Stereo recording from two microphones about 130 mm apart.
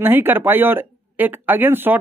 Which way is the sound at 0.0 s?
15° right (ahead or behind).